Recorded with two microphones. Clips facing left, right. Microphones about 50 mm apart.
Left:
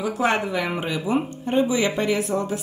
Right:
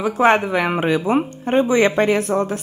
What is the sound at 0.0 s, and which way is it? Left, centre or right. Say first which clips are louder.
Speech: right 7 dB; right.